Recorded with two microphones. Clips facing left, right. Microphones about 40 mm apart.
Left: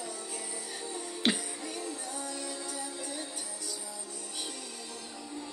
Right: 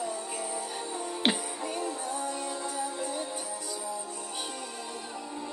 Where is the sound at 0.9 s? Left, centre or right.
Right.